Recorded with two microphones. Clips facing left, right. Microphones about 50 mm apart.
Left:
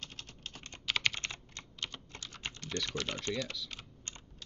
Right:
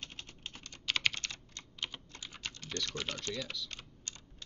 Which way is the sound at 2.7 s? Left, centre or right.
Left.